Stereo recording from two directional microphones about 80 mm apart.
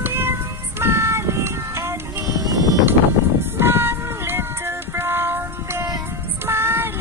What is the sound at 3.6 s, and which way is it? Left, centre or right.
Music, right.